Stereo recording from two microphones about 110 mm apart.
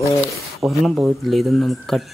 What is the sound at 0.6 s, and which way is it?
Speech, centre (ahead or behind).